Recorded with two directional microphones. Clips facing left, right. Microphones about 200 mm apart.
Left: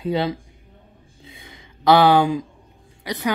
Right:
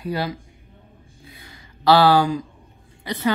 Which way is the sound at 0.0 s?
25° left (ahead or behind).